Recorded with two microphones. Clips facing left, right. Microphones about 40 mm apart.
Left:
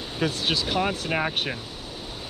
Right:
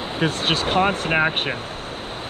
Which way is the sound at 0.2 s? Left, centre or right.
Right.